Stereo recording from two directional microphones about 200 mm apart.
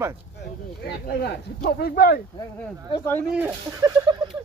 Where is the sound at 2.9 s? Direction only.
10° left (ahead or behind).